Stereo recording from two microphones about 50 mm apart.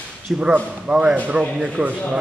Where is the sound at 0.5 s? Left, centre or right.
Right.